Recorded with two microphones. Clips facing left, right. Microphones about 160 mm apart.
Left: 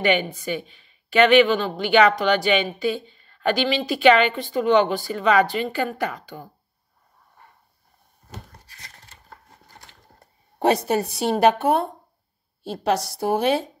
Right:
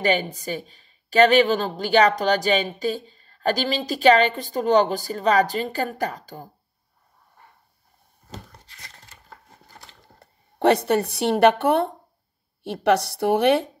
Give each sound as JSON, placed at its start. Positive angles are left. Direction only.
{"t": 0.0, "sound": "speech", "side_deg": -40}
{"t": 10.1, "sound": "a woman's voice", "side_deg": -65}